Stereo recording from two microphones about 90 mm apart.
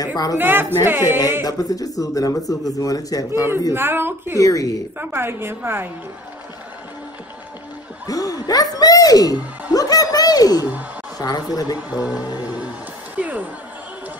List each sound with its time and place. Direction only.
0.0 s speech: 45° left (ahead or behind)
0.4 s a woman's voice: 25° right (ahead or behind)
1.4 s speech: 45° left (ahead or behind)
3.7 s a woman's voice: 25° right (ahead or behind)
4.4 s speech: 40° left (ahead or behind)
4.9 s a woman's voice: 25° right (ahead or behind)
8.1 s a woman's voice: 45° left (ahead or behind)
11.9 s music: 15° right (ahead or behind)
13.2 s speech: 15° right (ahead or behind)